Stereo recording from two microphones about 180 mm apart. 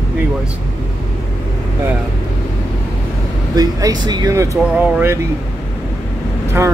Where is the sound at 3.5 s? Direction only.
20° right (ahead or behind).